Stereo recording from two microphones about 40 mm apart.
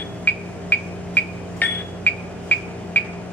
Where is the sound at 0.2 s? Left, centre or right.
Left.